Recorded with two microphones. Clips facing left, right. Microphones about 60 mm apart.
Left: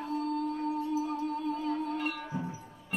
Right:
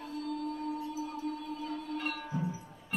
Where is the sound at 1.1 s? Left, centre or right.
Left.